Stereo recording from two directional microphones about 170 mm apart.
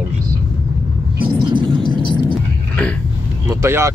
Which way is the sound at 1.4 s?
30° right (ahead or behind).